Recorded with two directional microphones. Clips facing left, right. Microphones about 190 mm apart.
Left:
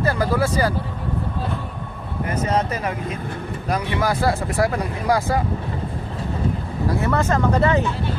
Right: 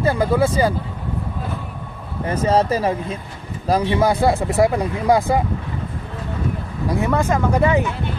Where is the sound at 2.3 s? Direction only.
30° right (ahead or behind).